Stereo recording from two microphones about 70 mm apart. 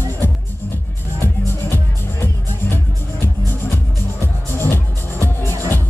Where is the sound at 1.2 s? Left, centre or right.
Left.